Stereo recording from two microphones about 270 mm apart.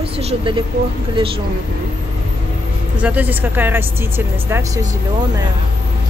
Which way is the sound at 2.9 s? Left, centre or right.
Centre.